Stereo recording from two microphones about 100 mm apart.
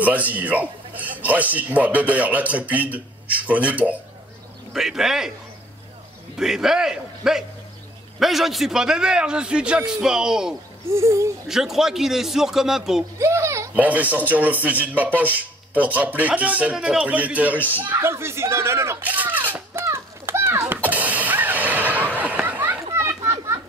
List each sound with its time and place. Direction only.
0.0 s a man's voice: 15° right (ahead or behind)
6.3 s a man's voice: 5° right (ahead or behind)
10.9 s speech: 30° right (ahead or behind)
11.4 s a man's voice: 5° right (ahead or behind)
13.2 s a child's voice: 30° right (ahead or behind)
13.7 s a man's voice: 15° right (ahead or behind)
19.0 s a sound: 15° right (ahead or behind)
22.9 s children playing: 30° right (ahead or behind)